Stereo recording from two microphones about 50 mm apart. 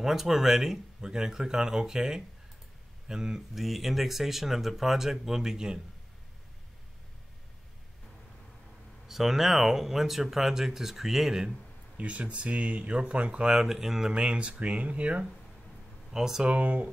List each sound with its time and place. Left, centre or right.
0.0 s speech: centre
3.5 s speech: centre
9.0 s speech: centre
12.0 s speech: right
16.1 s speech: centre
16.4 s speech: right